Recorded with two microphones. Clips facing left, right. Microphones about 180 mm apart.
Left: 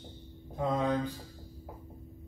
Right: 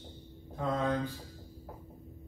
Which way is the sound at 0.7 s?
15° left (ahead or behind).